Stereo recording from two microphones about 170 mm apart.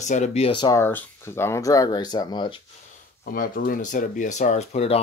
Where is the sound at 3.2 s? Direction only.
60° left (ahead or behind); by 5.0 s 40° left (ahead or behind).